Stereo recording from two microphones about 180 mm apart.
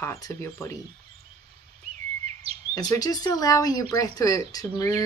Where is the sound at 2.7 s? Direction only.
20° left (ahead or behind).